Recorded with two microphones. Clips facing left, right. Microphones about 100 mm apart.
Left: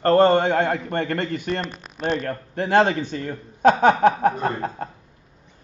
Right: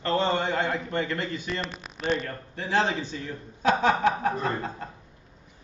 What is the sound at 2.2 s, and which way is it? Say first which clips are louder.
A man's voice: left 8 dB; 55° left (ahead or behind).